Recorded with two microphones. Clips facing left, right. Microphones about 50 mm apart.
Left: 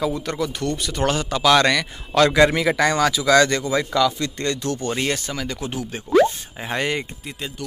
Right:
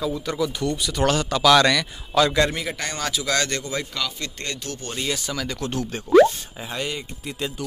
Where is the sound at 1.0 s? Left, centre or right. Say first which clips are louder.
Even; left.